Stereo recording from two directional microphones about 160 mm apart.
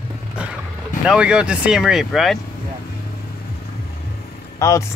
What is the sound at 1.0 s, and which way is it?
Speech, 5° right (ahead or behind).